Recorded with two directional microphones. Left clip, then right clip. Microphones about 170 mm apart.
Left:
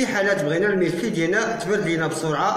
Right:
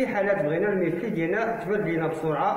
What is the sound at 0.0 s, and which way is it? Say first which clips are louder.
Speech: left 3 dB; 25° left (ahead or behind).